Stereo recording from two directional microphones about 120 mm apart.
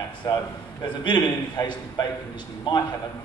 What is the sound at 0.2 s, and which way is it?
A man's voice, 30° left (ahead or behind).